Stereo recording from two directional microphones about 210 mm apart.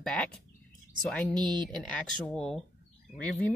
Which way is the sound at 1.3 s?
20° right (ahead or behind).